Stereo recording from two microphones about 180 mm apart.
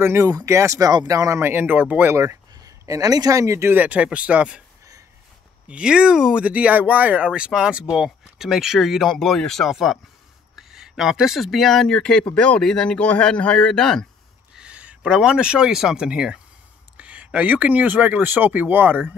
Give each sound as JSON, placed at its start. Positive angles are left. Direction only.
{"t": 0.0, "sound": "speech", "side_deg": -15}
{"t": 5.7, "sound": "speech", "side_deg": -5}